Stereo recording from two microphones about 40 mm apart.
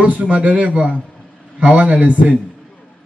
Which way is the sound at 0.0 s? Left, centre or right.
Right.